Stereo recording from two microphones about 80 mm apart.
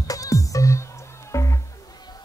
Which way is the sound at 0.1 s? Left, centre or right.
Left.